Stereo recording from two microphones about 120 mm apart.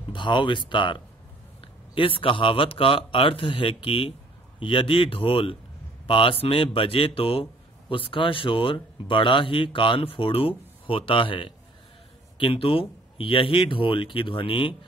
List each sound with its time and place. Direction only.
0.1 s speech: 40° left (ahead or behind)